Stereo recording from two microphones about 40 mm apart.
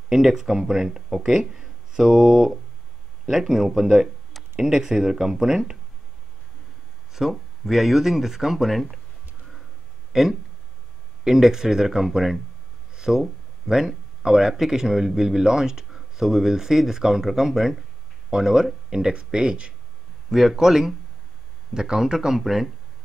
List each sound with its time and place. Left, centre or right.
0.1 s a man's voice: centre
7.1 s speech: centre
10.1 s a man's voice: centre
12.9 s a sound: centre
13.7 s a man's voice: centre
20.2 s a man's voice: centre